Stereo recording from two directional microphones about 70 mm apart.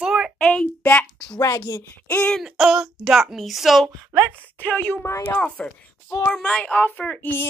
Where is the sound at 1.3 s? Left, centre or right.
Left.